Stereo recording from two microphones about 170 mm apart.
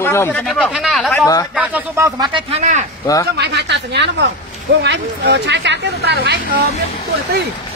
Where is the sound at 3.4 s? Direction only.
85° right.